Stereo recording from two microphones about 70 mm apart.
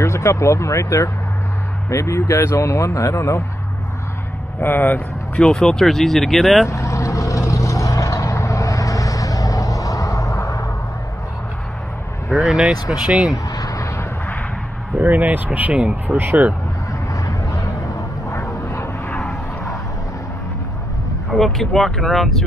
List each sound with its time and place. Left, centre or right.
0.0 s speech: left
4.6 s speech: left
5.4 s speech: centre
6.7 s vehicle: left
12.4 s speech: centre
12.7 s speech: left
13.1 s speech: centre
13.5 s a sound: left
15.0 s speech: right
15.8 s speech: centre
16.2 s speech: right
17.1 s vehicle: left
21.4 s speech: centre